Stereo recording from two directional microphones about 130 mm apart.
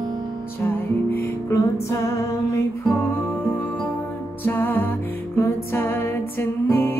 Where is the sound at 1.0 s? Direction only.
20° left (ahead or behind).